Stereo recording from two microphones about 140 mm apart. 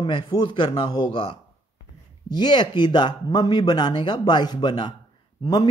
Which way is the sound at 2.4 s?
30° left (ahead or behind).